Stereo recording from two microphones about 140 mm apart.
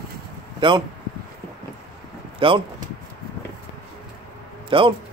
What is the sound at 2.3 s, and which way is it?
Speech, 40° right (ahead or behind).